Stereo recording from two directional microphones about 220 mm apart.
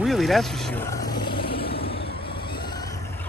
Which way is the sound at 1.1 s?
20° left (ahead or behind).